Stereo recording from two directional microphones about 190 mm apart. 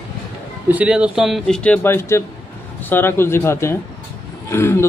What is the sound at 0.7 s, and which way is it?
A man's voice, 5° right (ahead or behind).